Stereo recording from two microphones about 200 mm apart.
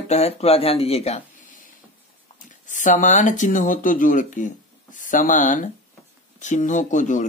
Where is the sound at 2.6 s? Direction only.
40° left (ahead or behind).